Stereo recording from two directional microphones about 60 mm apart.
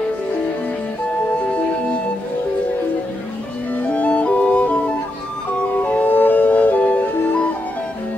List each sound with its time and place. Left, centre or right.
3.9 s music: left